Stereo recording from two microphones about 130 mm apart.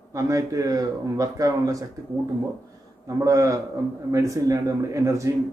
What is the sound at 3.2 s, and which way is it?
Speech, 25° right (ahead or behind).